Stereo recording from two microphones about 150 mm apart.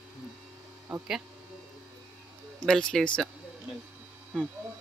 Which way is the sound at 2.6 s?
5° left (ahead or behind).